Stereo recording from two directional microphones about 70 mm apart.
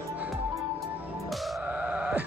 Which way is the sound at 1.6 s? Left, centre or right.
Centre.